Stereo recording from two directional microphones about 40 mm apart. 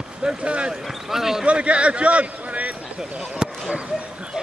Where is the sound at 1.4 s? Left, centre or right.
Right.